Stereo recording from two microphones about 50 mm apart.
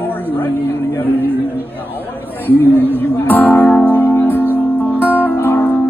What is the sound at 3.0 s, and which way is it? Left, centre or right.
Music, left.